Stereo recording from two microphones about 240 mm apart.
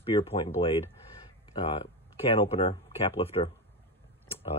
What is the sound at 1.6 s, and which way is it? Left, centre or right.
Speech, left.